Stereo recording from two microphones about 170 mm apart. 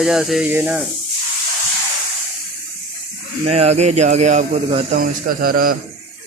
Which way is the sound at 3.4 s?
40° right (ahead or behind).